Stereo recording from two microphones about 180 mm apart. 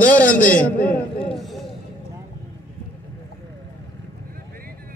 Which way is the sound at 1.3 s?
Centre (ahead or behind).